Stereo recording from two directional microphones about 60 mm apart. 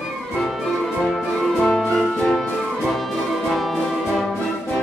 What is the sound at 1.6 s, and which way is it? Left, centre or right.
Music, centre.